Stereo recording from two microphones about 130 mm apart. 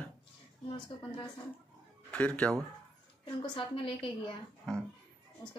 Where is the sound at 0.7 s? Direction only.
40° left (ahead or behind).